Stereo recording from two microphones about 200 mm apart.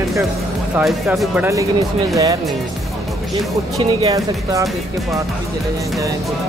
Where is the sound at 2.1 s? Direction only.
15° right (ahead or behind).